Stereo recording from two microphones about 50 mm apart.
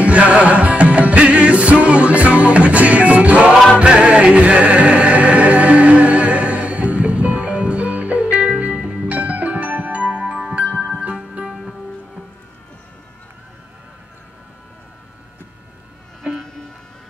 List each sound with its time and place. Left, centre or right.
0.0 s music: right